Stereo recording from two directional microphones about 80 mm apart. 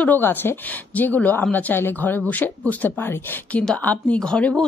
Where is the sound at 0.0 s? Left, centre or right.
Left.